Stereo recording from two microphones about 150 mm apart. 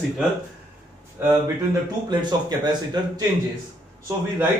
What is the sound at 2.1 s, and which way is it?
Speech, 30° right (ahead or behind).